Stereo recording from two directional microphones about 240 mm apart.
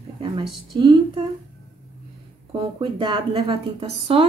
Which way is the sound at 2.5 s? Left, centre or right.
Right.